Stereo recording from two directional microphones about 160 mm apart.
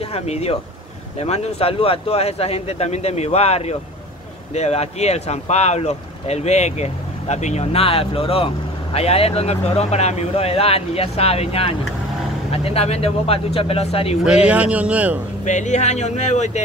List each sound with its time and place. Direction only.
0.1 s speech: 40° left (ahead or behind)
14.2 s a man's voice: 5° right (ahead or behind)
15.4 s speech: 50° left (ahead or behind)